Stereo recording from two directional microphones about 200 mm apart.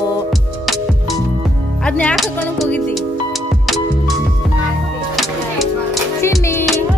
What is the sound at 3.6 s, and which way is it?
Music, centre (ahead or behind).